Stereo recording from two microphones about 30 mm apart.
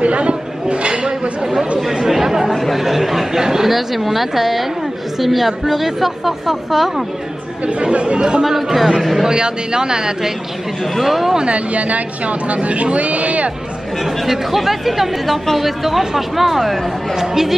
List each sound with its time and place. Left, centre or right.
0.0 s a sound: right
1.8 s chatter: centre
2.5 s chatter: centre
3.7 s a woman's voice: centre
7.6 s speech: right
8.4 s speech: centre
9.3 s speech: right
11.0 s speech: centre
11.4 s speech: right
14.2 s a woman's voice: centre
17.1 s speech: centre